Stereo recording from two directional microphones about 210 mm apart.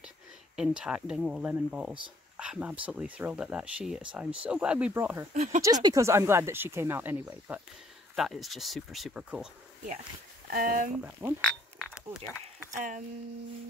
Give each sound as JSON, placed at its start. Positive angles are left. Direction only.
{"t": 0.6, "sound": "speech", "side_deg": -5}
{"t": 5.3, "sound": "speech", "side_deg": -35}
{"t": 5.6, "sound": "speech", "side_deg": -20}
{"t": 10.5, "sound": "speech", "side_deg": -40}
{"t": 11.1, "sound": "speech", "side_deg": -10}
{"t": 11.8, "sound": "a sound", "side_deg": -5}
{"t": 12.7, "sound": "speech", "side_deg": -40}